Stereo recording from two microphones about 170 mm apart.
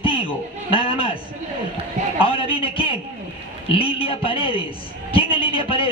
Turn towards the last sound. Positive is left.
turn(degrees=30)  # may be behind; listen again after turning